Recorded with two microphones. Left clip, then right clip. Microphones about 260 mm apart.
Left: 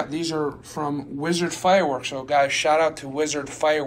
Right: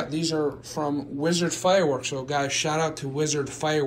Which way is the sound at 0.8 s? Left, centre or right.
Left.